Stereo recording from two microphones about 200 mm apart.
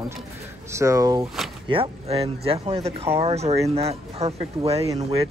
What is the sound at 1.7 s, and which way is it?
Speech, 30° right (ahead or behind).